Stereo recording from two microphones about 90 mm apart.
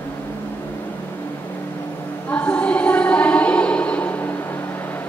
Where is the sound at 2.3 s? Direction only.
15° left (ahead or behind).